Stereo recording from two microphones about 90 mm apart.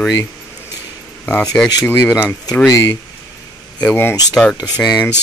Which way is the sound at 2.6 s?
35° left (ahead or behind).